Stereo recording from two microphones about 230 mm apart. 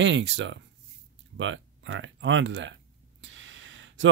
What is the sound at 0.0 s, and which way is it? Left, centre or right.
Speech, right.